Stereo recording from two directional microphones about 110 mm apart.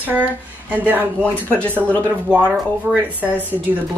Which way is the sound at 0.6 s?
15° right (ahead or behind).